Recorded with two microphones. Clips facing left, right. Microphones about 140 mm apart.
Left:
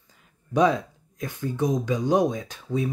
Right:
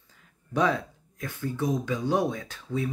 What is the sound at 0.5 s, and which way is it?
Speech, 15° left (ahead or behind).